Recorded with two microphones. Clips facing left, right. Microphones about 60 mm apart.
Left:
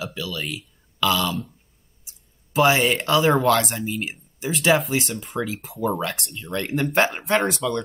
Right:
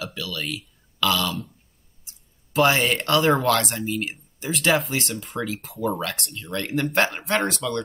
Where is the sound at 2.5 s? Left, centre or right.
Centre.